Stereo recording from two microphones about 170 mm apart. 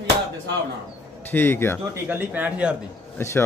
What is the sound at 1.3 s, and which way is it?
Speech, 10° left (ahead or behind).